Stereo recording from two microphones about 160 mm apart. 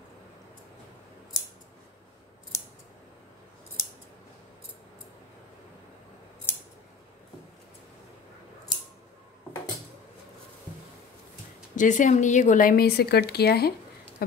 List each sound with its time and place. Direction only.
11.7 s speech: 50° left (ahead or behind); by 13.7 s 85° left